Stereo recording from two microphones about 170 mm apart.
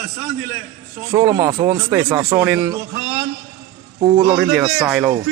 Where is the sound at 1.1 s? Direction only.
15° right (ahead or behind).